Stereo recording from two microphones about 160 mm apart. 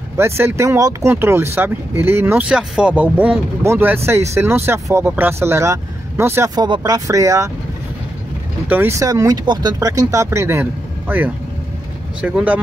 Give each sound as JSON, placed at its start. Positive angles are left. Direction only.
{"t": 0.2, "sound": "speech", "side_deg": -15}
{"t": 8.6, "sound": "speech", "side_deg": -15}